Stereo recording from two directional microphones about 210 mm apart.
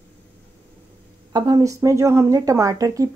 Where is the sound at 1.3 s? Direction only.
20° right (ahead or behind).